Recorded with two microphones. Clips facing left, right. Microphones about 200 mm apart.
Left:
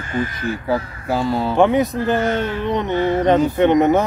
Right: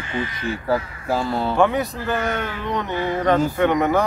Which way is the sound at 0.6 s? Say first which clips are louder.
Even; centre (ahead or behind).